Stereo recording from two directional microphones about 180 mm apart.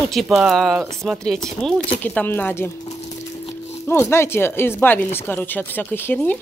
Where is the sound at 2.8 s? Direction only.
40° left (ahead or behind).